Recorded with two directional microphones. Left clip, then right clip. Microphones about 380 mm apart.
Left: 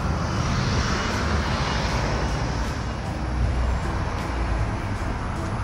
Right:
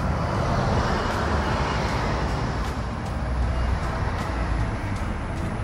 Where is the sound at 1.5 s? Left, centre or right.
Centre.